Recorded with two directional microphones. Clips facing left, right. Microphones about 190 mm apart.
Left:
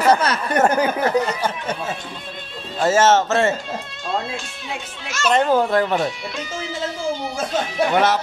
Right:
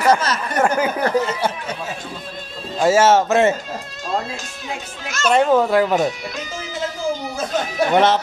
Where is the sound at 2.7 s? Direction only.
10° right (ahead or behind).